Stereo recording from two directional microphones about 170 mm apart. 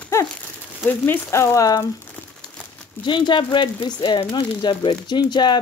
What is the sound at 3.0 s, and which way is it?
Speech, 25° left (ahead or behind).